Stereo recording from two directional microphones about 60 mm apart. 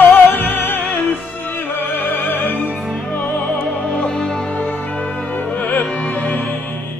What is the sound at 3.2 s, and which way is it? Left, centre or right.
Music, left.